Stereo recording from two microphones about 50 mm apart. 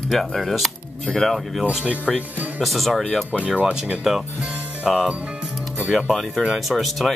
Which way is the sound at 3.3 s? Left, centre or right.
Right.